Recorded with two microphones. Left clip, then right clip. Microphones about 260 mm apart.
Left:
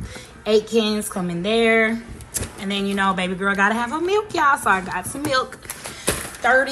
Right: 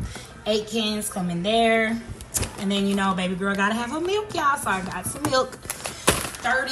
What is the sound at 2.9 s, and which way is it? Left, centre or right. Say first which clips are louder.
A woman's voice: left 6 dB; centre.